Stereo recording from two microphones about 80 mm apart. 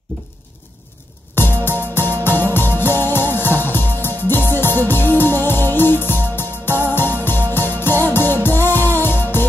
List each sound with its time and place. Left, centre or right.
1.3 s music: left